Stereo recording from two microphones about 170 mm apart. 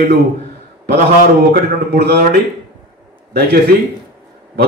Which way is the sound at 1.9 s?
70° right (ahead or behind).